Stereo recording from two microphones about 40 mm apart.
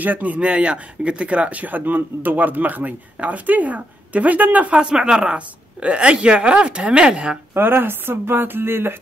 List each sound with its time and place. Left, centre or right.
0.0 s speech: right
0.4 s speech: right
4.7 s speech: centre
7.5 s speech: right